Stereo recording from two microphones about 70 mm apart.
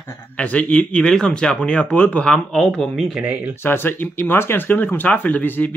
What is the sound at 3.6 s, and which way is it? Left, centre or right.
Speech, left.